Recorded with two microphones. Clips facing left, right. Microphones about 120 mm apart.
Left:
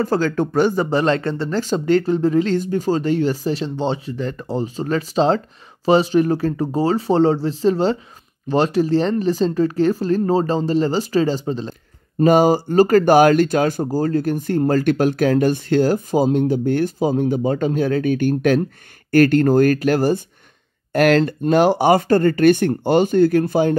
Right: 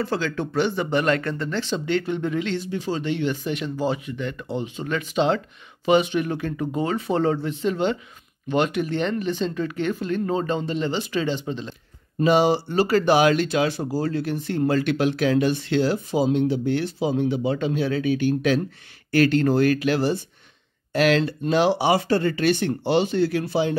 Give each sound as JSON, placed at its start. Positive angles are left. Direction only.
{"t": 0.0, "sound": "speech", "side_deg": 40}